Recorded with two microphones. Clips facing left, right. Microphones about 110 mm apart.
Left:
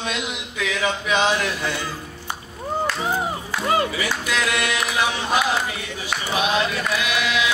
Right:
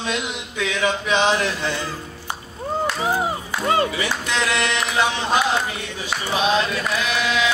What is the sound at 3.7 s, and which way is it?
Speech, 30° right (ahead or behind).